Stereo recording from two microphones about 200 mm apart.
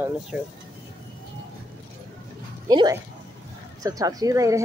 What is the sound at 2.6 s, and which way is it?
Speech, 20° right (ahead or behind).